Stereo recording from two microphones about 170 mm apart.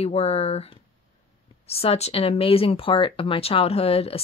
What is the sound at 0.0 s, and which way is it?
Speech, 35° left (ahead or behind).